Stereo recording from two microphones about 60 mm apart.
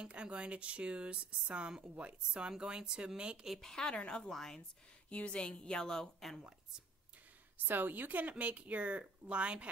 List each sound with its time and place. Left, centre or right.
0.0 s speech: centre
3.5 s a woman's voice: centre
5.1 s a woman's voice: centre
7.5 s speech: right